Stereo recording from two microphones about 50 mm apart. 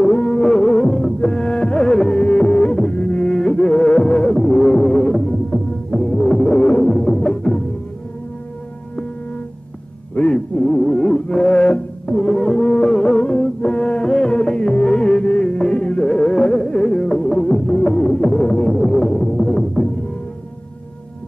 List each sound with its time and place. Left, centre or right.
0.0 s music: centre
10.1 s music: left